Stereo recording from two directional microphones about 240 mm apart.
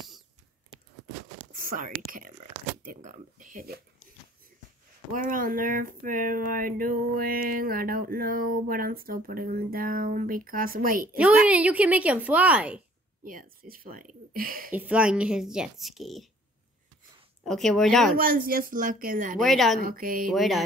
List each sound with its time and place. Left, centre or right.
1.6 s whispering: right
2.8 s speech: right
5.1 s speech: right
11.4 s speech: centre
13.2 s speech: right
14.7 s speech: centre
17.4 s speech: centre
18.1 s speech: right
19.4 s speech: centre
19.8 s speech: right
20.2 s speech: centre